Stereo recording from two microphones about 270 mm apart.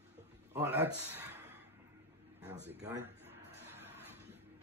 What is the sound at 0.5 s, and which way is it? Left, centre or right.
Speech, centre.